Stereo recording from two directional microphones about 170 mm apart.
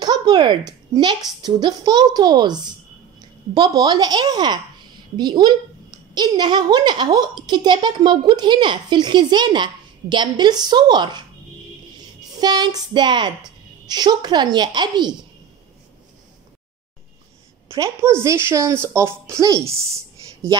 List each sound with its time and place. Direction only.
0.0 s a woman's voice: 25° right (ahead or behind)
12.4 s a woman's voice: 25° right (ahead or behind)
17.6 s a woman's voice: 15° right (ahead or behind)